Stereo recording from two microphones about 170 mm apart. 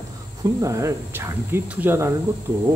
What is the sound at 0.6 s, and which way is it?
Speech, 15° right (ahead or behind).